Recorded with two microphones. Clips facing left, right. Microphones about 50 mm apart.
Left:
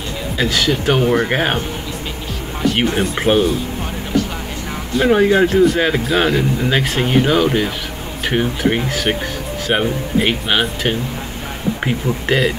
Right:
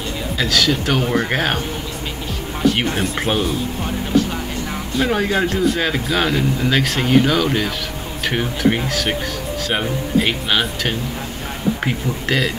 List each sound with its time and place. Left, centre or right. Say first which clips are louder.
0.4 s speech: left 1 dB; centre
2.7 s speech: left 3 dB; centre
5.2 s speech: left 6 dB; centre